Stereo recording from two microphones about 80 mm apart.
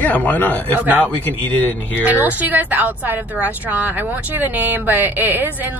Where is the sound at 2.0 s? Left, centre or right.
Right.